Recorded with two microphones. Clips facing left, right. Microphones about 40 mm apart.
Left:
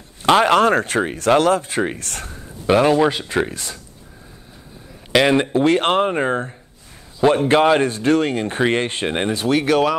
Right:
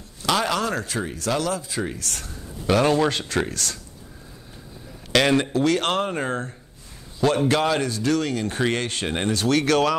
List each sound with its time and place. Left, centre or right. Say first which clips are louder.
0.2 s speech: left 9 dB; left
2.6 s speech: left 5 dB; left
5.1 s speech: left 4 dB; centre